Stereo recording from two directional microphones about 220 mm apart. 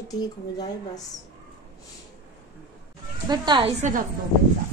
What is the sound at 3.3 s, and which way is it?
Speech, 20° right (ahead or behind).